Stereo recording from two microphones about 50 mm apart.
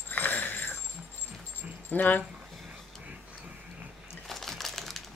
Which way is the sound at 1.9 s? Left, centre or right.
Left.